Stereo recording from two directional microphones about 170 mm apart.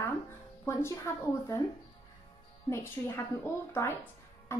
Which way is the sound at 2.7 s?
15° left (ahead or behind).